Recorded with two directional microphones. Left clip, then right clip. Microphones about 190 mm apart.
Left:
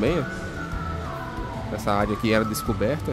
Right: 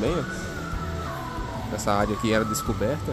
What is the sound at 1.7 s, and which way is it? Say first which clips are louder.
Speech: even; centre (ahead or behind).